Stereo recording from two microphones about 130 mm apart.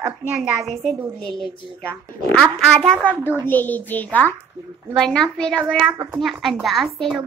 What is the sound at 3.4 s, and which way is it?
A woman's voice, 15° left (ahead or behind).